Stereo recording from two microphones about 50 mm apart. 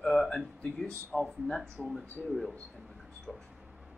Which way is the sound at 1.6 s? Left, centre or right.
Centre.